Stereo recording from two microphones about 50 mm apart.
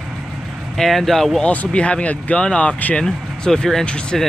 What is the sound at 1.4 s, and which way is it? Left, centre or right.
Speech, left.